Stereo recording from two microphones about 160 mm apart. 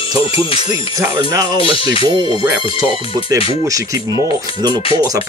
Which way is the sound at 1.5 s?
35° left (ahead or behind).